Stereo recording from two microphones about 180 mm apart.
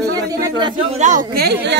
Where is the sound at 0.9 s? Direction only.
40° right (ahead or behind).